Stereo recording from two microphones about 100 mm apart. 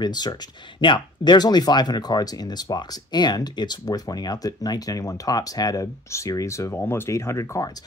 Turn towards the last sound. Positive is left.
turn(degrees=30)  # may be behind; listen again after turning